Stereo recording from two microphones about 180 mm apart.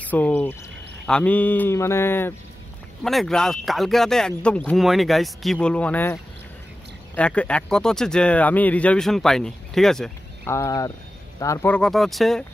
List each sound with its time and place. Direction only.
0.0 s speech: 10° left (ahead or behind)
3.0 s speech: centre (ahead or behind)
7.2 s speech: 5° left (ahead or behind)
10.4 s speech: 15° left (ahead or behind)